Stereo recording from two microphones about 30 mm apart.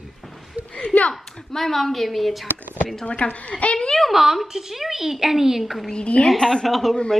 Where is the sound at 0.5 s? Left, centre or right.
Right.